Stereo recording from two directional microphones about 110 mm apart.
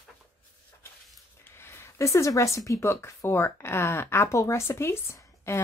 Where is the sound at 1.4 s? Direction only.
20° left (ahead or behind).